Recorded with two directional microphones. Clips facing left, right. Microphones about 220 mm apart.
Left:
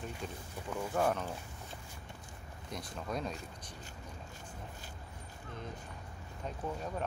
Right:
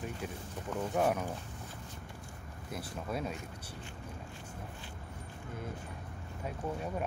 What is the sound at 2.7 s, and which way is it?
Speech, 5° right (ahead or behind).